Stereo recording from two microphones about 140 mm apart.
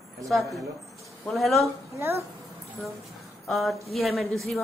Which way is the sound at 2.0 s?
20° right (ahead or behind).